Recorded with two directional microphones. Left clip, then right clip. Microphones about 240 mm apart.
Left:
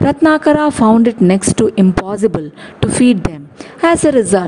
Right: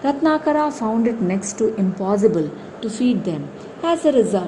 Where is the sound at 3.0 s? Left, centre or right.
Left.